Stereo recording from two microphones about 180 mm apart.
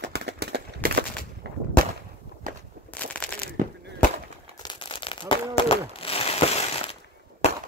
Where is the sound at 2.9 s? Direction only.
10° left (ahead or behind).